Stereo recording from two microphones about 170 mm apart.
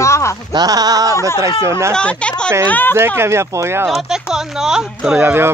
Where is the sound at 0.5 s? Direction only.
25° right (ahead or behind).